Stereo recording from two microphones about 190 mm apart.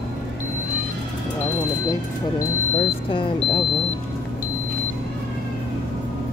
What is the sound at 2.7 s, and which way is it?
Speech, 25° left (ahead or behind).